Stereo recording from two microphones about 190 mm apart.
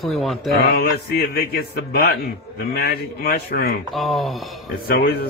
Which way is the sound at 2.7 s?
55° left (ahead or behind).